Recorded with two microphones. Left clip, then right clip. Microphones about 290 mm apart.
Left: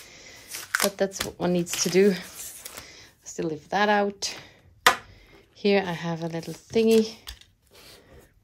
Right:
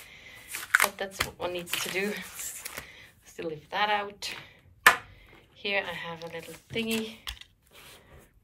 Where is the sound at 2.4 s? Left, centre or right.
Centre.